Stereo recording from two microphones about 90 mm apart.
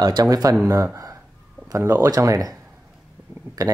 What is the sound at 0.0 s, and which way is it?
Speech, 45° right (ahead or behind).